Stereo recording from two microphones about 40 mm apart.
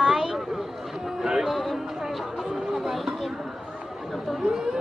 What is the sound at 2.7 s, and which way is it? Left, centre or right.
Chatter, centre.